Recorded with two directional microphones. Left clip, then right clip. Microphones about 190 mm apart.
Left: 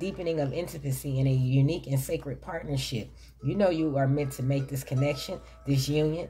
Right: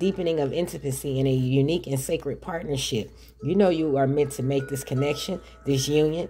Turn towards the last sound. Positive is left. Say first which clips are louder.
# right 6 dB
turn(degrees=-45)  # may be behind; listen again after turning